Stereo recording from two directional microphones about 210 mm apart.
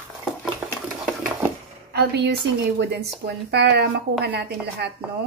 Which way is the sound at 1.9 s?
50° right (ahead or behind).